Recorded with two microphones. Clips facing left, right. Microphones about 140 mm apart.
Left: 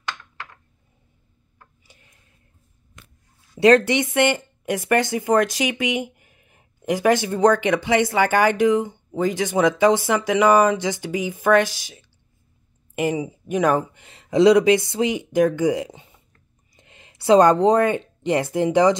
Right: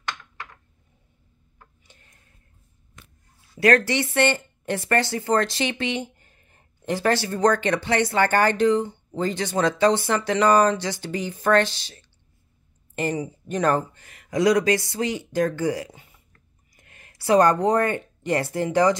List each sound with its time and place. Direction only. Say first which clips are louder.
1.6 s tick-tock: left 1 dB; 10° left (ahead or behind)
3.5 s speech: left 5 dB; 25° left (ahead or behind)